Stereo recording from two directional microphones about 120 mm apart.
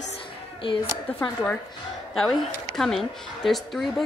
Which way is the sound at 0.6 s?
50° left (ahead or behind).